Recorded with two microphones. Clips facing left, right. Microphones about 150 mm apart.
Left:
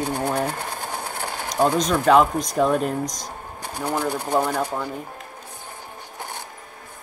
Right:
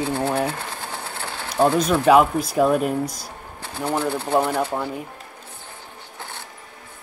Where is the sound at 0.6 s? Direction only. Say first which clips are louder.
Left 2 dB; 50° left (ahead or behind).